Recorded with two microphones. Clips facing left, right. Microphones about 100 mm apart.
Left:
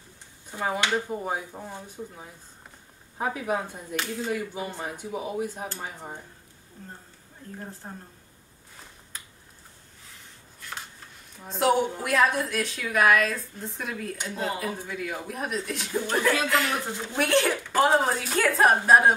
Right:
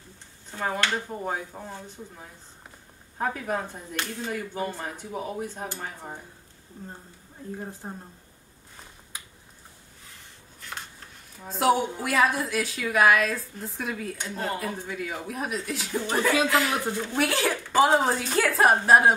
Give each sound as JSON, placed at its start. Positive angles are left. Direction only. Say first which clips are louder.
{"t": 0.5, "sound": "a woman's voice", "louder": "left 1 dB", "side_deg": 15}
{"t": 7.8, "sound": "speech", "louder": "right 3 dB", "side_deg": -15}
{"t": 11.3, "sound": "a woman's voice", "louder": "even", "side_deg": 0}
{"t": 16.9, "sound": "speech", "louder": "right 4 dB", "side_deg": 15}
{"t": 17.2, "sound": "a woman's voice", "louder": "left 3 dB", "side_deg": 0}